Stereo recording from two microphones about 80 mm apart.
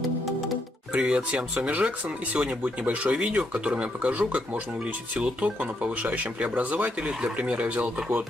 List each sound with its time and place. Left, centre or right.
0.9 s speech: centre